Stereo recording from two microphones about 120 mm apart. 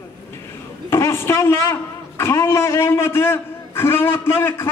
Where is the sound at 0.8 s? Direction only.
20° left (ahead or behind).